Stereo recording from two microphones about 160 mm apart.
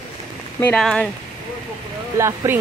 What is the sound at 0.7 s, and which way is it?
Speech, 5° left (ahead or behind).